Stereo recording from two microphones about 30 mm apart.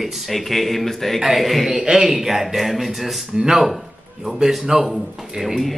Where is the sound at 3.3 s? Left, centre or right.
Right.